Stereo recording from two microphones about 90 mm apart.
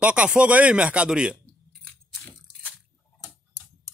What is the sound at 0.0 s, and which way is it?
Speech, 15° right (ahead or behind).